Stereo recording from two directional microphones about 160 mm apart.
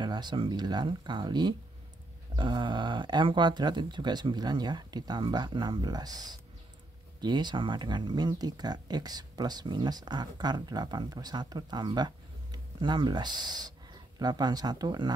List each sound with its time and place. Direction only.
0.0 s speech: 30° right (ahead or behind)